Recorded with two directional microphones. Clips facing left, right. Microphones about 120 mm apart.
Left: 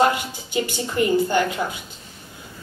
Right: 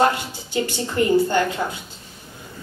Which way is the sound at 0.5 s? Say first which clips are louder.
Right 1 dB; 15° left (ahead or behind).